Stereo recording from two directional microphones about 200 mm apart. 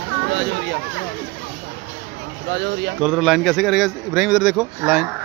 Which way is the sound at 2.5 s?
60° right (ahead or behind).